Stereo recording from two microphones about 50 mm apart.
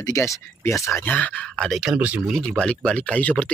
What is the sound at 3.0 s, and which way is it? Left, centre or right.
Speech, left.